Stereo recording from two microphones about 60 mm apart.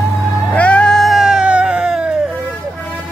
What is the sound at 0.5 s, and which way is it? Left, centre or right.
Cat, left.